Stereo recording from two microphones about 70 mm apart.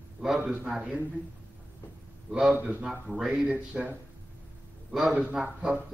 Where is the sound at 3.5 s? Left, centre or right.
Right.